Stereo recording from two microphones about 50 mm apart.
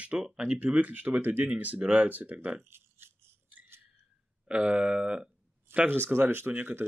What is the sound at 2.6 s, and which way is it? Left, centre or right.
Speech, right.